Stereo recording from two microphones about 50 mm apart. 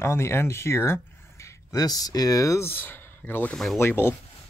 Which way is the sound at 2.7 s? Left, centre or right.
Left.